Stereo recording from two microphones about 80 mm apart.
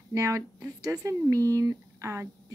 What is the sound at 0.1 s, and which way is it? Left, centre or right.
Speech, right.